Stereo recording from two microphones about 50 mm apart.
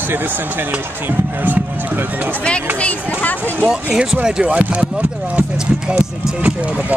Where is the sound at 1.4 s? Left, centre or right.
Right.